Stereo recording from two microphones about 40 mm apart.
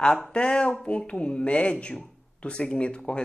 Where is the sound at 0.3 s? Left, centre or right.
Left.